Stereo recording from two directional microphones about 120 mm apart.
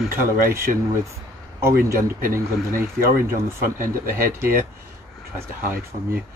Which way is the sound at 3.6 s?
20° right (ahead or behind).